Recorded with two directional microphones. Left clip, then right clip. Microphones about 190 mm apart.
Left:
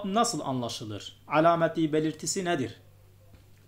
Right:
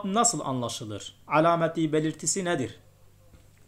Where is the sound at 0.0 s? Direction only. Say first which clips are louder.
Right 1 dB; 15° right (ahead or behind).